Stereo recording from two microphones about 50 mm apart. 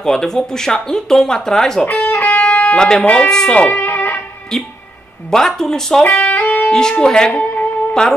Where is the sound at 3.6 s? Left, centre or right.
Left.